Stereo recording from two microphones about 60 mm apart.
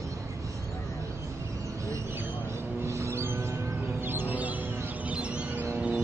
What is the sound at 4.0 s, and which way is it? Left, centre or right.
Music, right.